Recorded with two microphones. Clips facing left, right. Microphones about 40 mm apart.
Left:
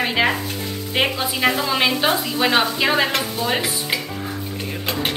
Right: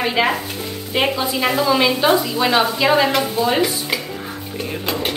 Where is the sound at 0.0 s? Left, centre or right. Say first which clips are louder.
Right 1 dB; centre.